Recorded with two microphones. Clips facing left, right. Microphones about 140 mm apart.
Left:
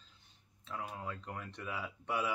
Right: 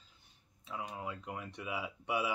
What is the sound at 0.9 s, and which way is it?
Speech, 10° right (ahead or behind).